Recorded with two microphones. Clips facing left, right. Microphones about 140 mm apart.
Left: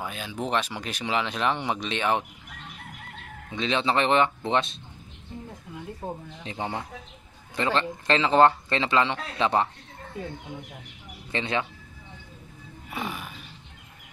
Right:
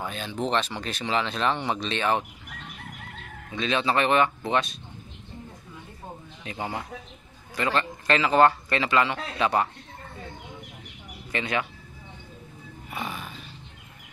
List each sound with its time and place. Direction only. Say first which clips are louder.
0.0 s speech: right 2 dB; 10° left (ahead or behind)
3.5 s speech: even; 20° left (ahead or behind)
6.4 s speech: even; 25° left (ahead or behind)
11.3 s speech: even; 25° left (ahead or behind)
13.0 s a sound: left 1 dB; 10° left (ahead or behind)